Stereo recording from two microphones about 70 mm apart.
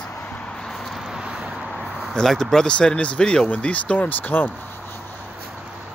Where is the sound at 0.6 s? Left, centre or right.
Centre.